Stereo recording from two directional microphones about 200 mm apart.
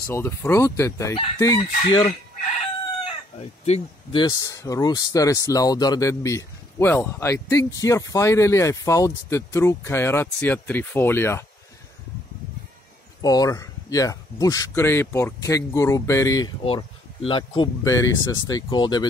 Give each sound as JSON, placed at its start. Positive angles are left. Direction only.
{"t": 0.0, "sound": "speech", "side_deg": 15}
{"t": 1.6, "sound": "speech", "side_deg": 35}
{"t": 1.9, "sound": "speech", "side_deg": 25}
{"t": 3.3, "sound": "speech", "side_deg": 30}
{"t": 13.2, "sound": "speech", "side_deg": 20}